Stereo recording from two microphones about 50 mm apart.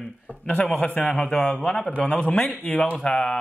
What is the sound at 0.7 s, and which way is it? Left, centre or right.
Speech, left.